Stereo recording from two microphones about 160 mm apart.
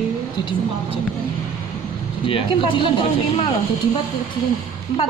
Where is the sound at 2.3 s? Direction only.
35° left (ahead or behind).